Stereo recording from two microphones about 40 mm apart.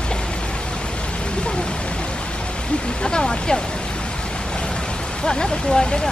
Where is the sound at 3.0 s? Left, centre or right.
Centre.